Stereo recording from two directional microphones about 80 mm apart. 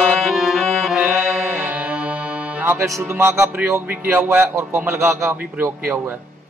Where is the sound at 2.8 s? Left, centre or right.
Right.